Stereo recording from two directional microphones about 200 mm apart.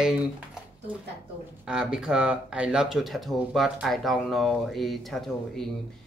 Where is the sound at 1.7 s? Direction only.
5° right (ahead or behind).